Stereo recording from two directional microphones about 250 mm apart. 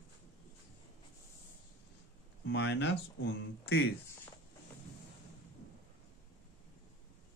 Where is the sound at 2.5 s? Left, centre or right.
Left.